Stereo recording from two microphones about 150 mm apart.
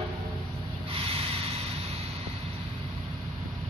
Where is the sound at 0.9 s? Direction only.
40° right (ahead or behind).